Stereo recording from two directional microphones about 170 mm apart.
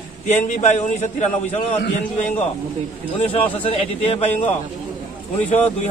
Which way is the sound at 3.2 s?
35° left (ahead or behind).